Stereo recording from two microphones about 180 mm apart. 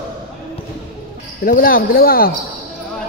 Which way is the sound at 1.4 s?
50° left (ahead or behind).